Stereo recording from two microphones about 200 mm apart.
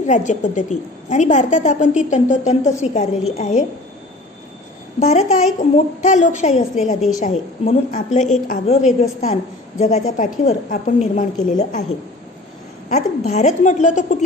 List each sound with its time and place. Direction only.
0.0 s a woman's voice: 35° left (ahead or behind)
5.0 s a woman's voice: 35° left (ahead or behind)
12.9 s a woman's voice: 35° left (ahead or behind)